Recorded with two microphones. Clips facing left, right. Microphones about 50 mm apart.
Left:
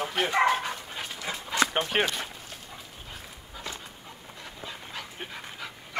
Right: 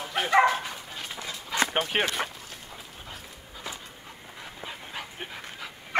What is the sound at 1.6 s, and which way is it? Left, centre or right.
Speech, centre.